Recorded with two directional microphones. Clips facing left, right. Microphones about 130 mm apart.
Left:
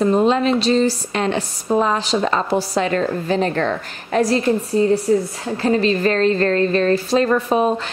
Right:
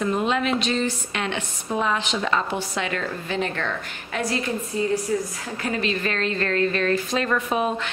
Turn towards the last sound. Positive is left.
turn(degrees=35)  # may be behind; listen again after turning